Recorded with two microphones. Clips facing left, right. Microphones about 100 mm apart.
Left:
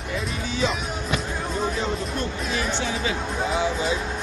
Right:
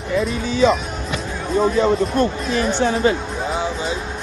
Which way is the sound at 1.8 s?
50° right (ahead or behind).